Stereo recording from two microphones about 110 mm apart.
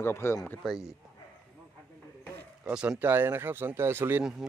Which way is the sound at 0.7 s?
Centre (ahead or behind).